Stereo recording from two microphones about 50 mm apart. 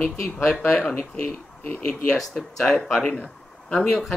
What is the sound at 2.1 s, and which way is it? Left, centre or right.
Speech, centre.